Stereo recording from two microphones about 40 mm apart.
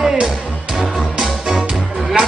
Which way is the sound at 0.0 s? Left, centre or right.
Centre.